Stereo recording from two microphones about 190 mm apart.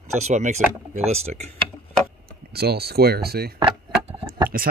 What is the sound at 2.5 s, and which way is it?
Speech, 55° right (ahead or behind).